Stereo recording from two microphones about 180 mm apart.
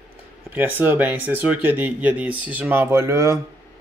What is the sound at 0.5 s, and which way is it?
Speech, 10° right (ahead or behind).